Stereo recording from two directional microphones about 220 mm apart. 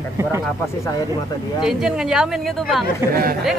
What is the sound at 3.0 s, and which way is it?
Speech, 10° right (ahead or behind).